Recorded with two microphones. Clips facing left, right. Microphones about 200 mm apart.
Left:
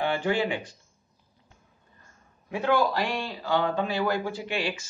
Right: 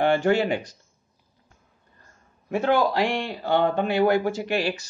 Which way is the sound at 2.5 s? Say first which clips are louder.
Right 3 dB; 55° right (ahead or behind).